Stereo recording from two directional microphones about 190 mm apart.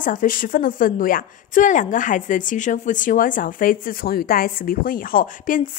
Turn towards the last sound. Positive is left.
turn(degrees=45)  # may be behind; listen again after turning